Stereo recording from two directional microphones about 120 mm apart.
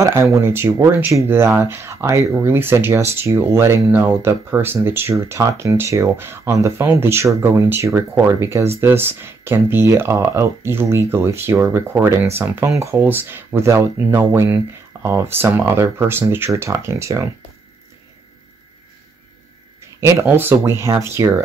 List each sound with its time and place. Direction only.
0.0 s speech: 25° right (ahead or behind)
14.9 s a sound: 20° right (ahead or behind)
15.3 s speech: 25° right (ahead or behind)
19.8 s speech: 25° right (ahead or behind)